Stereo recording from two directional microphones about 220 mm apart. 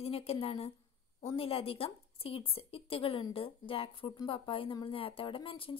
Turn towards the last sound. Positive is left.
turn(degrees=25)  # may be behind; listen again after turning